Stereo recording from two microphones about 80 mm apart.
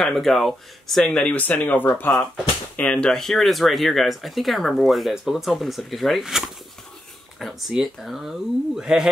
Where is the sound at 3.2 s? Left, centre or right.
Centre.